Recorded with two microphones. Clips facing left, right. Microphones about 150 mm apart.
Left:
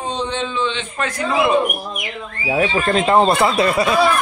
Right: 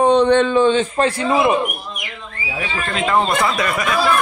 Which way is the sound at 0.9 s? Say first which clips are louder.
Right 5 dB; 30° right (ahead or behind).